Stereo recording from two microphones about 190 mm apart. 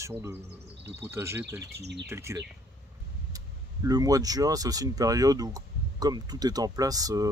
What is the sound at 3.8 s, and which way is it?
Speech, 20° right (ahead or behind).